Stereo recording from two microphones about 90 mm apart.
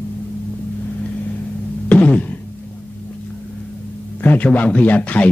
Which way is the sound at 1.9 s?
15° left (ahead or behind).